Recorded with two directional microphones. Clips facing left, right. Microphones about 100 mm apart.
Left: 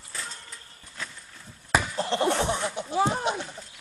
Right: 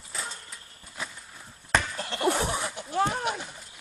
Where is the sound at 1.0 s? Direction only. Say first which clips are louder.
Right 1 dB; 15° right (ahead or behind).